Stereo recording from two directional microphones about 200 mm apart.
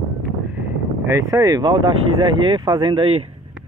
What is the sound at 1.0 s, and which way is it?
Speech, 15° right (ahead or behind).